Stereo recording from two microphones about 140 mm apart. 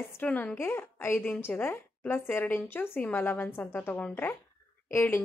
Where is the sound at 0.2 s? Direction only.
10° left (ahead or behind).